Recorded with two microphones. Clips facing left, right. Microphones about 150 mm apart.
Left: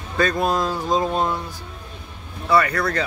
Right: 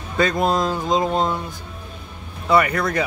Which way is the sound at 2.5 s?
20° right (ahead or behind).